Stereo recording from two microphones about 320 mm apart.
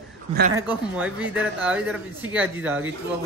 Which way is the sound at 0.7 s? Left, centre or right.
Centre.